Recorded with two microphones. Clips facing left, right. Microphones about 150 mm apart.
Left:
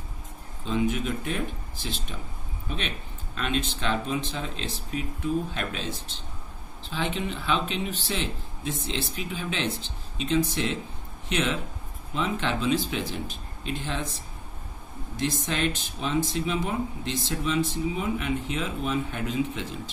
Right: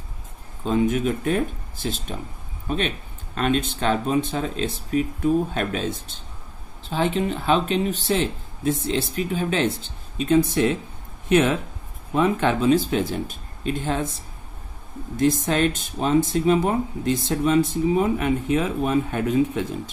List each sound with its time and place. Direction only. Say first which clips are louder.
0.7 s speech: right 6 dB; 45° right (ahead or behind)
6.9 s speech: right 7 dB; 45° right (ahead or behind)
15.1 s speech: right 8 dB; 45° right (ahead or behind)